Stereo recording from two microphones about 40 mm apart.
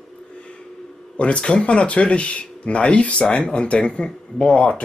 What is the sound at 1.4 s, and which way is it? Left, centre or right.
Speech, left.